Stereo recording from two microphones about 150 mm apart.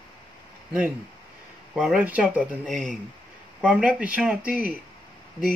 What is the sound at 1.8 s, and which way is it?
Speech, 10° right (ahead or behind).